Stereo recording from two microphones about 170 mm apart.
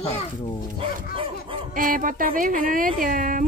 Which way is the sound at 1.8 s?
55° right (ahead or behind).